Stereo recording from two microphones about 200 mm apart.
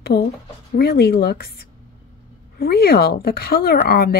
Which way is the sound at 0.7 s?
55° left (ahead or behind).